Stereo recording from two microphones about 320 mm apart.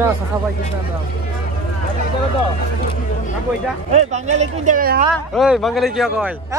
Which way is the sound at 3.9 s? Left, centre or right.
Right.